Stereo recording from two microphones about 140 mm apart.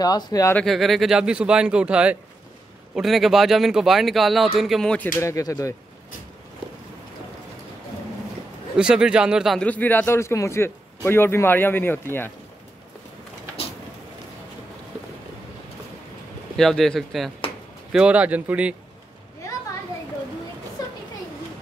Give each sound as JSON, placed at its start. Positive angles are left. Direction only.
{"t": 0.0, "sound": "speech", "side_deg": 25}
{"t": 0.6, "sound": "speech", "side_deg": 0}
{"t": 5.2, "sound": "speech", "side_deg": 20}
{"t": 8.7, "sound": "speech", "side_deg": -5}
{"t": 9.7, "sound": "speech", "side_deg": 10}
{"t": 16.5, "sound": "speech", "side_deg": 0}